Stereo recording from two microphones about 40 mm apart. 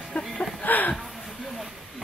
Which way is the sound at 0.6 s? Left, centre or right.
Left.